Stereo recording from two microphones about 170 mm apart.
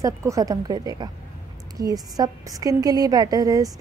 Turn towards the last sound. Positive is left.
turn(degrees=-20)  # may be behind; listen again after turning